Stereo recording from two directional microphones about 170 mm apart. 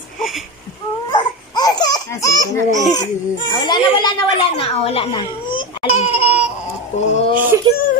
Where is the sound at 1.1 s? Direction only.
25° left (ahead or behind).